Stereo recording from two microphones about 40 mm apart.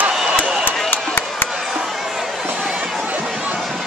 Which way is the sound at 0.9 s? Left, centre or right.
Left.